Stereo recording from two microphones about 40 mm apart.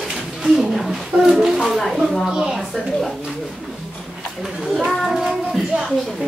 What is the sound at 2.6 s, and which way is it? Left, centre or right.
Speech, centre.